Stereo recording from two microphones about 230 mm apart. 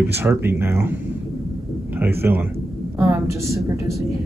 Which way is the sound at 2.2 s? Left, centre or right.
Centre.